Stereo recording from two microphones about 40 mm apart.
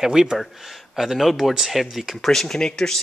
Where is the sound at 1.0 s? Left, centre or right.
Centre.